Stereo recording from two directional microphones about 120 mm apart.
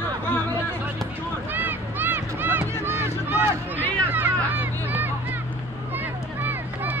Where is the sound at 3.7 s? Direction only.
15° left (ahead or behind).